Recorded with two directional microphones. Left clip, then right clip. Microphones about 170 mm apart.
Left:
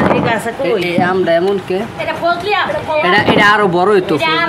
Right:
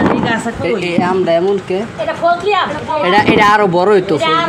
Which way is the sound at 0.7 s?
Centre (ahead or behind).